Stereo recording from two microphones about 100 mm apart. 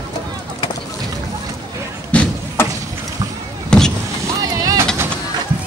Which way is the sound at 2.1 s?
25° left (ahead or behind).